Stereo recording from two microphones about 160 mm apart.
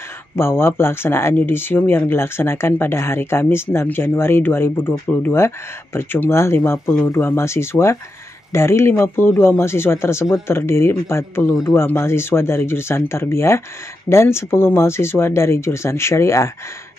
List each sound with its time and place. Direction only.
0.4 s speech: 15° left (ahead or behind)